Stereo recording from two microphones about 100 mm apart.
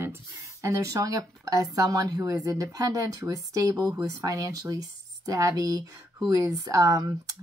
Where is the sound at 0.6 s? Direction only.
35° right (ahead or behind).